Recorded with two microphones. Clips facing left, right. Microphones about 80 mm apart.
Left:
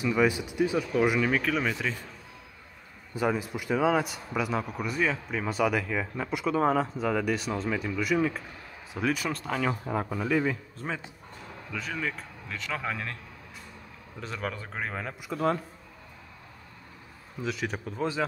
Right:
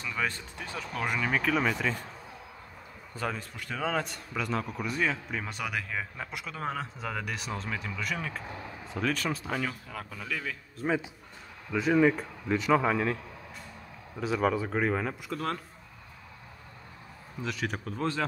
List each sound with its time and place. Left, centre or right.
0.0 s speech: centre
3.2 s a man's voice: centre
9.3 s a man's voice: centre
9.7 s speech: left
11.7 s speech: centre
14.2 s a man's voice: centre
17.4 s a man's voice: centre